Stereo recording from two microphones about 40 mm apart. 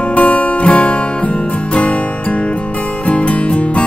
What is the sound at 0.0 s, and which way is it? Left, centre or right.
Music, left.